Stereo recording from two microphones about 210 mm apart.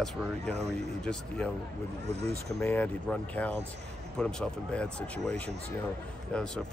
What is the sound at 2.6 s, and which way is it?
Speech, 10° left (ahead or behind).